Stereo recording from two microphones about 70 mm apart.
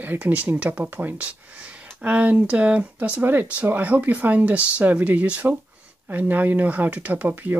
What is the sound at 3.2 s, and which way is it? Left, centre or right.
Speech, right.